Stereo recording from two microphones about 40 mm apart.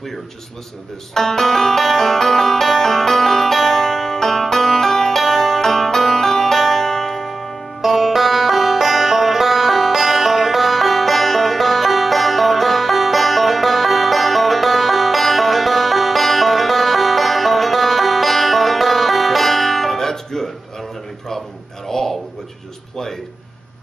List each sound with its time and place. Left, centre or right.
1.1 s music: centre
7.8 s music: centre
21.8 s a sound: centre